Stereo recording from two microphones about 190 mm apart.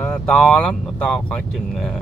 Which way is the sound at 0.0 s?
5° left (ahead or behind).